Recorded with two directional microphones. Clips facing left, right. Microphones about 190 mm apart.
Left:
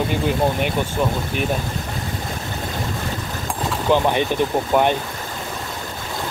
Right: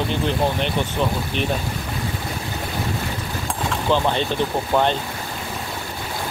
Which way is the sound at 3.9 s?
15° left (ahead or behind).